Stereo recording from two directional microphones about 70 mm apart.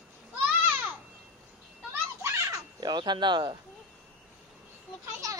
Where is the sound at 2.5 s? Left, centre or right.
Right.